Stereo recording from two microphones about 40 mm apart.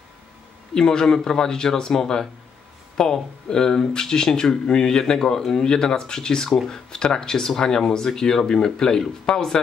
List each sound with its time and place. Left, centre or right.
0.7 s speech: centre